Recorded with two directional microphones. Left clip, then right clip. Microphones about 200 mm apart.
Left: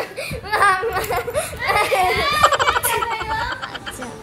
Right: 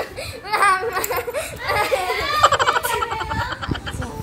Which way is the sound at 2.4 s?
Centre (ahead or behind).